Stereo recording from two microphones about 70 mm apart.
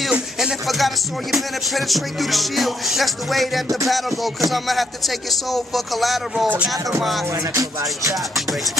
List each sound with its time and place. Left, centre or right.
0.1 s music: centre
7.5 s music: right